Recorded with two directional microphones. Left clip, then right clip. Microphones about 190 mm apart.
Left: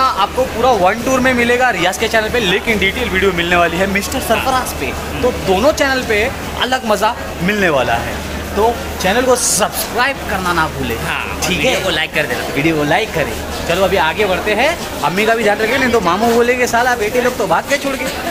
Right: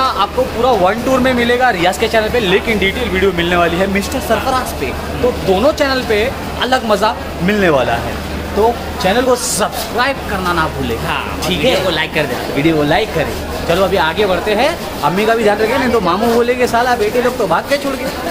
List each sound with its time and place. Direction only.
0.0 s a man's voice: centre (ahead or behind)
1.4 s a man's voice: 15° left (ahead or behind)
9.0 s a man's voice: centre (ahead or behind)
11.9 s speech: 20° right (ahead or behind)
12.5 s a man's voice: centre (ahead or behind)